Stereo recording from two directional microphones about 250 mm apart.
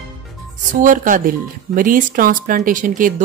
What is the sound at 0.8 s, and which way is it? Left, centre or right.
Speech, right.